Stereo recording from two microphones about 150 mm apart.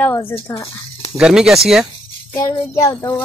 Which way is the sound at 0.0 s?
15° left (ahead or behind).